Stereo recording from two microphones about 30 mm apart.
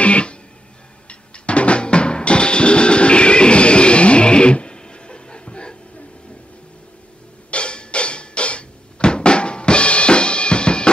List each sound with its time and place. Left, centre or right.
0.0 s music: left
7.5 s music: left